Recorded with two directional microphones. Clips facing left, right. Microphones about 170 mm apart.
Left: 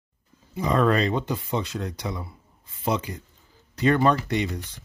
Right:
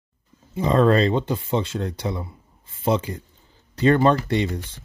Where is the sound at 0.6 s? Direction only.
30° right (ahead or behind).